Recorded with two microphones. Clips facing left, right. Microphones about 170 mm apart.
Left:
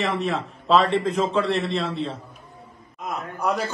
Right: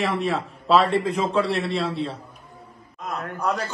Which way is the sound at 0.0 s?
Centre (ahead or behind).